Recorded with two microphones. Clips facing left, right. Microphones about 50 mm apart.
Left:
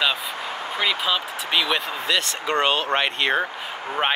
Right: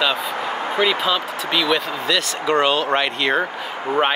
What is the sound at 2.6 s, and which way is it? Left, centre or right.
Speech, left.